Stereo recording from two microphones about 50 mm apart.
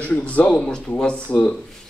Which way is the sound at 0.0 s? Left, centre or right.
Left.